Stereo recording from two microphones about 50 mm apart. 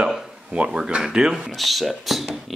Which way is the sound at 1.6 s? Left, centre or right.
Centre.